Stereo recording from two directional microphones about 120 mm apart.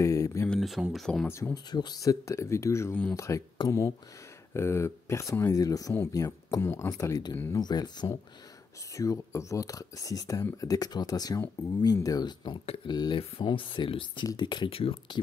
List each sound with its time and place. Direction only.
0.0 s a sound: 25° left (ahead or behind)
0.5 s speech: centre (ahead or behind)
1.2 s speech: 20° left (ahead or behind)
1.5 s speech: 35° left (ahead or behind)
2.9 s speech: 10° left (ahead or behind)
3.2 s speech: 25° left (ahead or behind)
4.6 s speech: 20° left (ahead or behind)
12.6 s speech: 50° left (ahead or behind)
12.9 s speech: 40° left (ahead or behind)